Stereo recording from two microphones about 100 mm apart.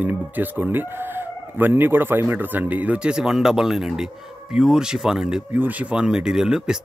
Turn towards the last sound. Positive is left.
turn(degrees=-5)  # may be behind; listen again after turning